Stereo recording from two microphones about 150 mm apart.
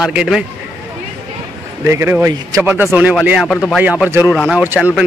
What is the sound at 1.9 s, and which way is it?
Speech, 15° right (ahead or behind).